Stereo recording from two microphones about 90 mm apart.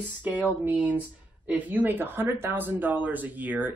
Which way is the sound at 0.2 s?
15° right (ahead or behind).